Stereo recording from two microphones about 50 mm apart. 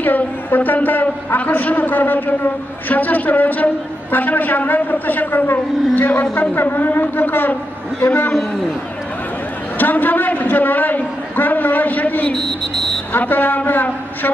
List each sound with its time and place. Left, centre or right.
0.0 s a woman's voice: left
2.9 s a sound: left
6.5 s a woman's voice: left
9.8 s a man's voice: left
12.3 s a sound: centre
13.1 s a woman's voice: left